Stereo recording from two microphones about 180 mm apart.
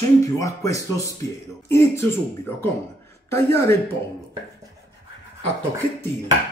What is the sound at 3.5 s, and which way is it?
Speech, 15° left (ahead or behind).